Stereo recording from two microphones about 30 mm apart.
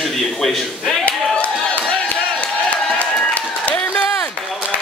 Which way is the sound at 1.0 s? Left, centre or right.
Left.